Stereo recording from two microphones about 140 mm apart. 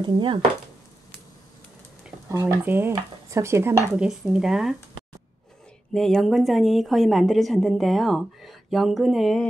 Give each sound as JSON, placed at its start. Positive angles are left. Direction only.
{"t": 0.0, "sound": "speech", "side_deg": -35}
{"t": 2.2, "sound": "speech", "side_deg": -20}
{"t": 3.9, "sound": "a woman's voice", "side_deg": -5}
{"t": 5.9, "sound": "a woman's voice", "side_deg": 0}